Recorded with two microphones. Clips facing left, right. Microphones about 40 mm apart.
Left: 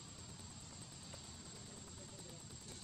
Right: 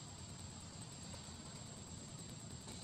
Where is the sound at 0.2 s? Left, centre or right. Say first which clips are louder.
Right 1 dB; centre.